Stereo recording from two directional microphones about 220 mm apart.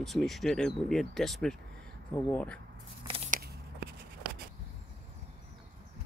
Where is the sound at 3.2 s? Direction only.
45° right (ahead or behind).